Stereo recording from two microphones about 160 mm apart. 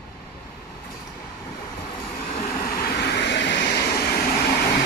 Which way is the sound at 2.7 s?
80° left.